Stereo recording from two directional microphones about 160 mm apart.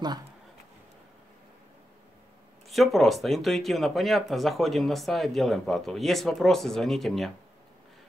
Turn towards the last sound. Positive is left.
turn(degrees=0)  # may be behind; listen again after turning